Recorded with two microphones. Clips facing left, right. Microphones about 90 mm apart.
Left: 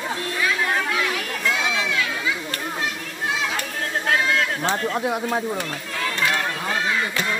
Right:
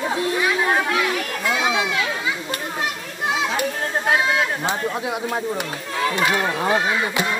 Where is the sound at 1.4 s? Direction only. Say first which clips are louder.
Right 3 dB; 20° right (ahead or behind).